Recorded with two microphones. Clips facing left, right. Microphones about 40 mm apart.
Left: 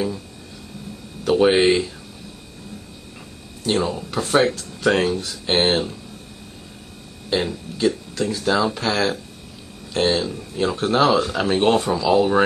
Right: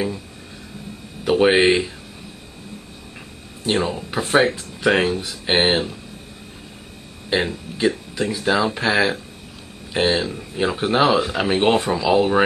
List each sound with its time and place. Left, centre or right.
1.2 s speech: centre
3.6 s speech: centre
7.2 s speech: centre